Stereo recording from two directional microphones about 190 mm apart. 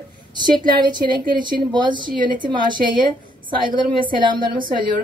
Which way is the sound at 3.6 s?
25° right (ahead or behind).